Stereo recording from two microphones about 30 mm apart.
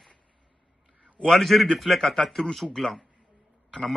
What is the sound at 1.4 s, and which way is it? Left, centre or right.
Speech, centre.